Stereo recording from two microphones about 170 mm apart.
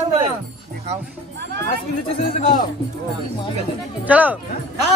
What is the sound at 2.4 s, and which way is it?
Speech, 50° left (ahead or behind).